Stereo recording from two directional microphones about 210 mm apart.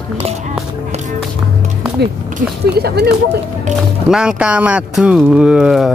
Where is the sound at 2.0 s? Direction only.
50° right (ahead or behind).